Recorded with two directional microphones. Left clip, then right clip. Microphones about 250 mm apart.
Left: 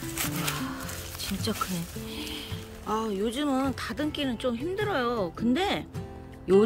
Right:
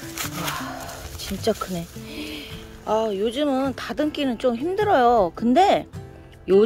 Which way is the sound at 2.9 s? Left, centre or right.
Centre.